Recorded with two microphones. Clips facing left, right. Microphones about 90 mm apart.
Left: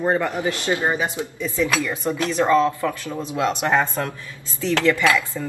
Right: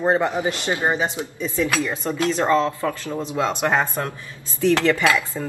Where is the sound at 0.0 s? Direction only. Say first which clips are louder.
Right 1 dB; 20° right (ahead or behind).